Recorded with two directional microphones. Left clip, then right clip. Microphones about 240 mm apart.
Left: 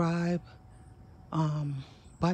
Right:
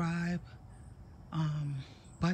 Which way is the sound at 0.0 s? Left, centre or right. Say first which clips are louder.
Left 6 dB; centre.